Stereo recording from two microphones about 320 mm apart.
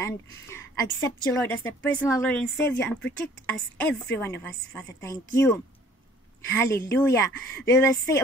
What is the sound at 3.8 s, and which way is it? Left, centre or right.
Speech, centre.